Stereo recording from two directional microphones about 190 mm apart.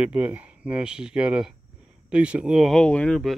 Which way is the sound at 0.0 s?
10° right (ahead or behind).